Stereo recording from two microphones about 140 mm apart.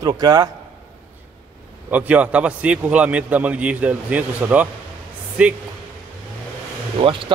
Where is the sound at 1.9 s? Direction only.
10° right (ahead or behind).